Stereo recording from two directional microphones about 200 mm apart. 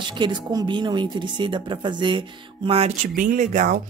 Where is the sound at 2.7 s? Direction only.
35° right (ahead or behind).